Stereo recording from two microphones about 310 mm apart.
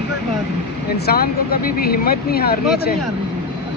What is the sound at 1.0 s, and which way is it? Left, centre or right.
Speech, left.